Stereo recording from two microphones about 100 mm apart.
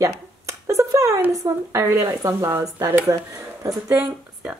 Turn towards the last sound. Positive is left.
turn(degrees=-15)  # may be behind; listen again after turning